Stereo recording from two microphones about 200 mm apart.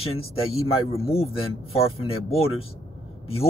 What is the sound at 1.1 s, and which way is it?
Speech, 30° left (ahead or behind).